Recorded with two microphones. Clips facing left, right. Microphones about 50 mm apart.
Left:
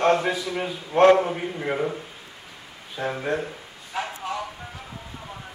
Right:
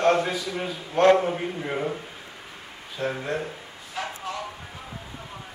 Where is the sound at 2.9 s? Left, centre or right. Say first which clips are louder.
Left 2 dB; centre.